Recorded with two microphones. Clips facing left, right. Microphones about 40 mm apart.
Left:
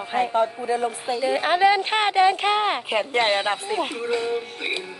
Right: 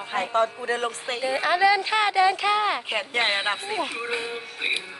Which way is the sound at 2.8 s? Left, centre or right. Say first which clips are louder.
Left 4 dB; centre.